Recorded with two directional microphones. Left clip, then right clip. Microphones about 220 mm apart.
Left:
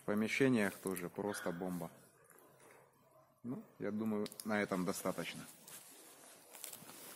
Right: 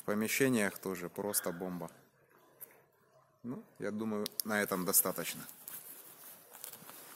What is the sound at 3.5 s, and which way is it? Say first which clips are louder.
Speech: right 2 dB; 50° right (ahead or behind).